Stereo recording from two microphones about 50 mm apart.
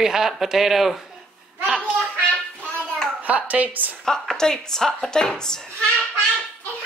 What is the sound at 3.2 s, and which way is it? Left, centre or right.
Speech, right.